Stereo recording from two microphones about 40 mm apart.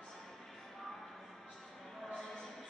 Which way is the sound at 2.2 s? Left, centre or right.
Centre.